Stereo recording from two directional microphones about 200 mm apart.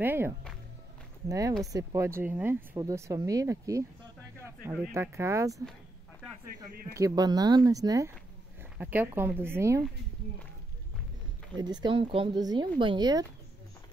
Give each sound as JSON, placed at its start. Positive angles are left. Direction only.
{"t": 0.0, "sound": "speech", "side_deg": -10}
{"t": 1.6, "sound": "speech", "side_deg": -15}
{"t": 6.4, "sound": "speech", "side_deg": -45}
{"t": 6.9, "sound": "speech", "side_deg": -15}
{"t": 11.5, "sound": "speech", "side_deg": -20}